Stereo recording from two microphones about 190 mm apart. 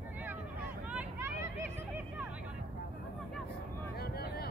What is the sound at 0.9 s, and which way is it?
Vehicle, 10° right (ahead or behind).